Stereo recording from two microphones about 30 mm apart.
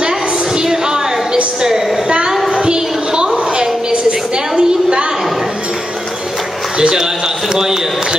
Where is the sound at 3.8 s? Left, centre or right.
Right.